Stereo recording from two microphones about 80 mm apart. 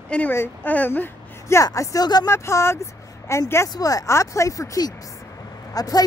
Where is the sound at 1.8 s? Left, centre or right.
Left.